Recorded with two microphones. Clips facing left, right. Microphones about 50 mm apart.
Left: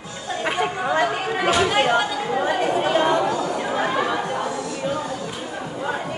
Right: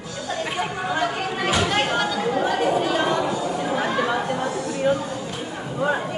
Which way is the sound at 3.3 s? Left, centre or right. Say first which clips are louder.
Left 1 dB; left.